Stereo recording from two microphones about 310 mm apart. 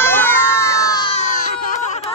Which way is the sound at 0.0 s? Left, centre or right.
Centre.